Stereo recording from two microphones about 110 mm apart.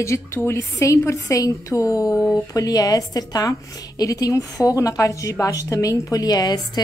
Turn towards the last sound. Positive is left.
turn(degrees=35)  # may be behind; listen again after turning